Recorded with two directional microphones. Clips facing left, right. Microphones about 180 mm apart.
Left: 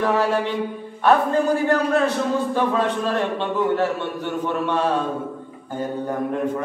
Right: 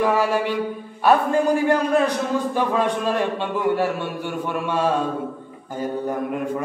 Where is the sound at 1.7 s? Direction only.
15° right (ahead or behind).